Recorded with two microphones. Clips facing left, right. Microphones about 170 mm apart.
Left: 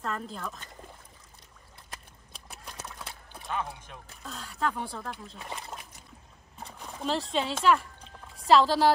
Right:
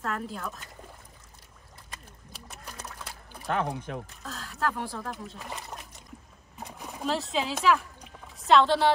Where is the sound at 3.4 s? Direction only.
60° right (ahead or behind).